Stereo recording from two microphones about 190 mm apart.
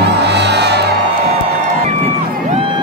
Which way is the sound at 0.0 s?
65° right (ahead or behind).